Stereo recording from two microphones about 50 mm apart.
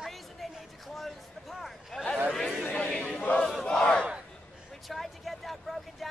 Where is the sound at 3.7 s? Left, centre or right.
Centre.